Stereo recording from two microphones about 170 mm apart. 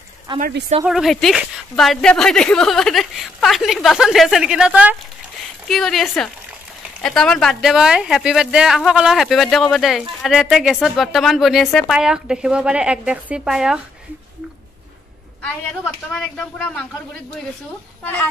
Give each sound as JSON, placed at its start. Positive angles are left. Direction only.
{"t": 0.3, "sound": "speech", "side_deg": -30}
{"t": 0.8, "sound": "a woman's voice", "side_deg": 0}
{"t": 15.4, "sound": "a woman's voice", "side_deg": 5}